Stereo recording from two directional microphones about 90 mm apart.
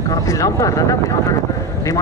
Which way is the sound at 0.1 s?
35° left (ahead or behind).